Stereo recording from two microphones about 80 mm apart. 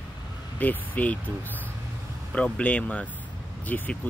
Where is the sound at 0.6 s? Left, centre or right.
Left.